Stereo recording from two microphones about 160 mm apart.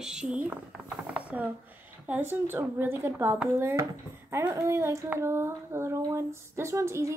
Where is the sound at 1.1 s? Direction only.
10° right (ahead or behind).